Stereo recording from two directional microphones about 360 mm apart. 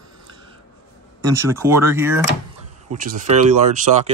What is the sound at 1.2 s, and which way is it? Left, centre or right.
Speech, centre.